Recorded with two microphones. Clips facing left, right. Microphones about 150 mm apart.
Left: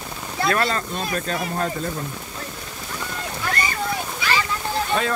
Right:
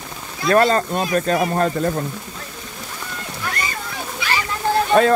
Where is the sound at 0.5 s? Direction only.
40° right (ahead or behind).